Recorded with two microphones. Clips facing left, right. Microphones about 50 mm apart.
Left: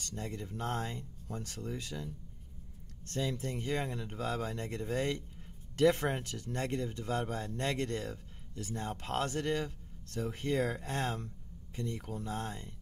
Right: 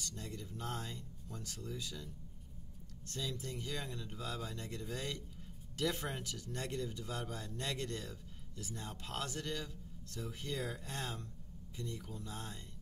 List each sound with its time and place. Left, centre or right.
0.0 s speech: left
3.1 s speech: left